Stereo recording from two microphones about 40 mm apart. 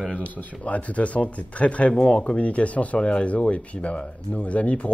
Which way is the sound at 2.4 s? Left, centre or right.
Left.